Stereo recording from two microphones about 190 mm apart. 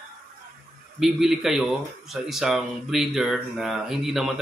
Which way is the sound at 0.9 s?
Centre (ahead or behind).